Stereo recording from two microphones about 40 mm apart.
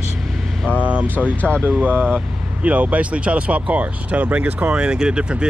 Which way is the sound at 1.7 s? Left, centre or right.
Right.